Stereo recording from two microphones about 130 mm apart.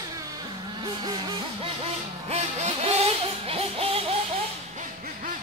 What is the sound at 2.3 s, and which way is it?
Vehicle, 55° right (ahead or behind).